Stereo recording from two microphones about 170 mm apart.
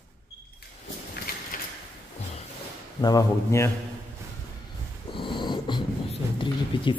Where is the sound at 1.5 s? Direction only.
55° left (ahead or behind).